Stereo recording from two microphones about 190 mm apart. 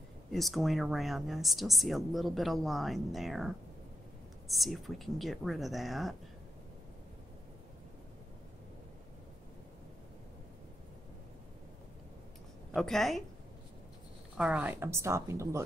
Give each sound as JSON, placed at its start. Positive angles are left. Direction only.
{"t": 0.3, "sound": "speech", "side_deg": 0}
{"t": 12.7, "sound": "speech", "side_deg": 0}
{"t": 14.3, "sound": "speech", "side_deg": -5}